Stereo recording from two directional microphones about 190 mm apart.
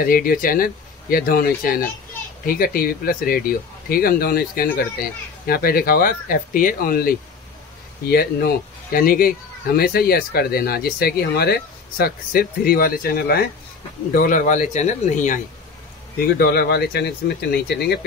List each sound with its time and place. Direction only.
0.0 s speech: 50° left (ahead or behind)
16.2 s speech: 55° left (ahead or behind)